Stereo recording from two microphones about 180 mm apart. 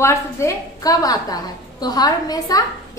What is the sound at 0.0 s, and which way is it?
A woman's voice, 15° left (ahead or behind).